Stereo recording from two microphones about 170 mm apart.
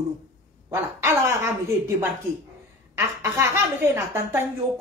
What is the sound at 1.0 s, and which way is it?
Speech, 15° right (ahead or behind).